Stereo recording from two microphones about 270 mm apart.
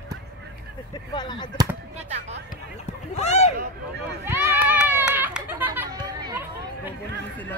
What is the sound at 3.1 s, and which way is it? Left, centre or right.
Speech, left.